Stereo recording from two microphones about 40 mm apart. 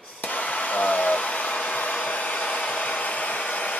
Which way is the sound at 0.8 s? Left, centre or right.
Left.